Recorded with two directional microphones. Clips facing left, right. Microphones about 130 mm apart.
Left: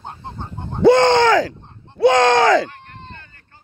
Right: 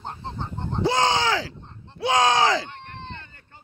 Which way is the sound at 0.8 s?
65° left (ahead or behind).